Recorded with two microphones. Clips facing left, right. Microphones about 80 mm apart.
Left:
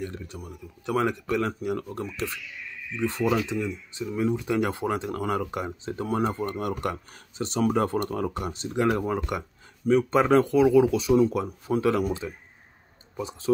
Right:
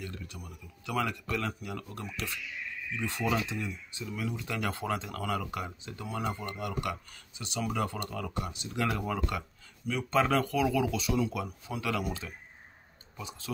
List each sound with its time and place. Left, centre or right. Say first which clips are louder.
0.0 s speech: left 7 dB; left
12.1 s speech: left 7 dB; left